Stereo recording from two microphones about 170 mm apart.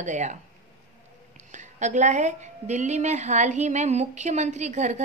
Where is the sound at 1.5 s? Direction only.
45° right (ahead or behind).